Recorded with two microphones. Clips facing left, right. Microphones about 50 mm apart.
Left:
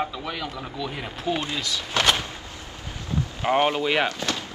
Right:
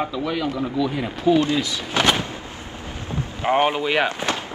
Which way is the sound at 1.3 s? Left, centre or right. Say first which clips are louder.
Right 10 dB; centre.